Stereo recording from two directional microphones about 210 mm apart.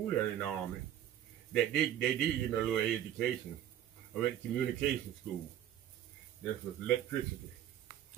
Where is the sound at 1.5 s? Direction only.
5° left (ahead or behind).